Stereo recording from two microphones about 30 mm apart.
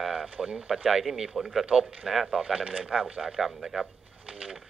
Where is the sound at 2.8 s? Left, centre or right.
Right.